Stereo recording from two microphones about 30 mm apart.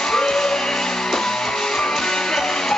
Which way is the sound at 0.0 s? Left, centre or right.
Centre.